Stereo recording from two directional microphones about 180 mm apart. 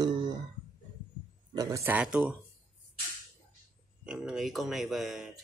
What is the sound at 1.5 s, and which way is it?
Speech, 20° right (ahead or behind).